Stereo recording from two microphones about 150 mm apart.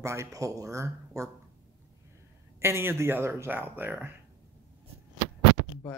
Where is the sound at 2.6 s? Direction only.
15° right (ahead or behind).